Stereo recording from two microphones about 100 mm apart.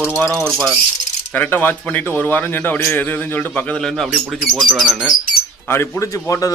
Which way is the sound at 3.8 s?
5° left (ahead or behind).